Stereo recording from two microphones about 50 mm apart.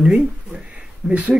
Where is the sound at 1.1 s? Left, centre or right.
Right.